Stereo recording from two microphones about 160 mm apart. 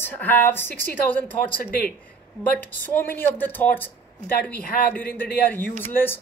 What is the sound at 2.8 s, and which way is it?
A woman's voice, 15° left (ahead or behind).